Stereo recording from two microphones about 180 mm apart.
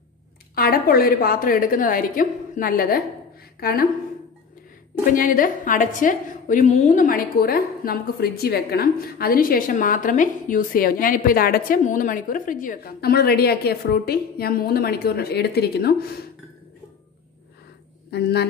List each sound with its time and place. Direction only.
0.6 s a woman's voice: 55° left (ahead or behind)
5.1 s a woman's voice: 50° left (ahead or behind)
18.1 s speech: 65° left (ahead or behind)